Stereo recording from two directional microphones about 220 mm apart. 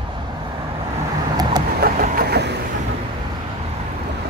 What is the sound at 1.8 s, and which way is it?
Vehicle, 45° right (ahead or behind).